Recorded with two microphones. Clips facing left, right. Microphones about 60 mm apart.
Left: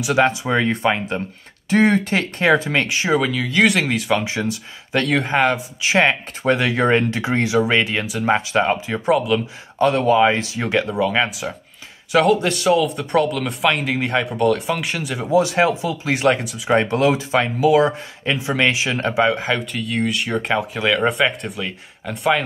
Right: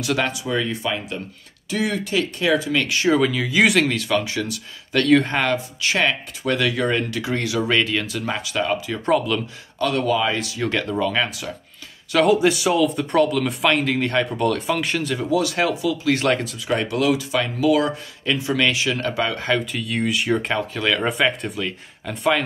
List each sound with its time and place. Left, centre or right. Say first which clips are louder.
0.2 s speech: left 6 dB; left
2.9 s speech: right 2 dB; left
3.2 s speech: even; centre
3.9 s speech: left 2 dB; left
5.0 s speech: right 4 dB; centre
5.4 s speech: left 3 dB; centre
9.0 s speech: left 3 dB; centre
9.8 s speech: left 5 dB; left
10.7 s speech: left 4 dB; centre
12.2 s speech: even; centre
15.1 s speech: left 6 dB; left
16.2 s speech: left 3 dB; centre
16.6 s speech: left 5 dB; left
19.4 s speech: even; centre